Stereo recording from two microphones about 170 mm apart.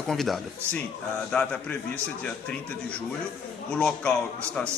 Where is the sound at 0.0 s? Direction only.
Centre (ahead or behind).